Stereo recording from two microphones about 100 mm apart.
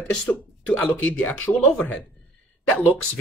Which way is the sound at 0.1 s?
15° left (ahead or behind).